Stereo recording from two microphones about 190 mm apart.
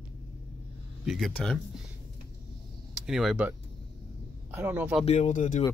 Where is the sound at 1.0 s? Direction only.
Centre (ahead or behind).